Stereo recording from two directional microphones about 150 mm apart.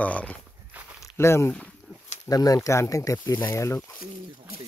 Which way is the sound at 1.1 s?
15° left (ahead or behind).